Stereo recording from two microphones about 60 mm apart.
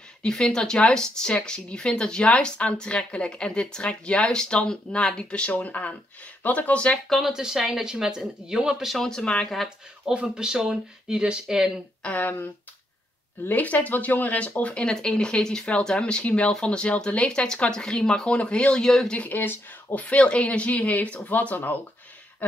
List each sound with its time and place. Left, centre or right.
0.3 s speech: centre
7.1 s speech: centre
8.9 s speech: centre
10.0 s speech: centre
12.0 s speech: left
13.5 s speech: left; by 19.1 s centre
19.1 s speech: left